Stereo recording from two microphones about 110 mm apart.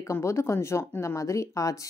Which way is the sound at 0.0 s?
25° left (ahead or behind).